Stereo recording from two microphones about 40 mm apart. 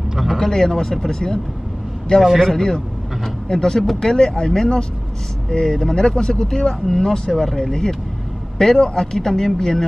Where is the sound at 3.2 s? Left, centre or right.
Centre.